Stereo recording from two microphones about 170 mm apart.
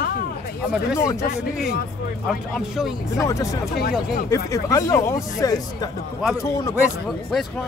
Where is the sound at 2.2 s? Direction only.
Centre (ahead or behind).